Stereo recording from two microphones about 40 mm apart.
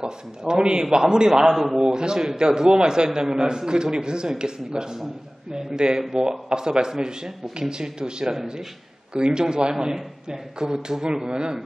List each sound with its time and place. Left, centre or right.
0.0 s a man's voice: centre